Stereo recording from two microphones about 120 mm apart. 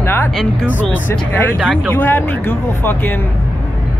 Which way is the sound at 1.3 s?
20° left (ahead or behind).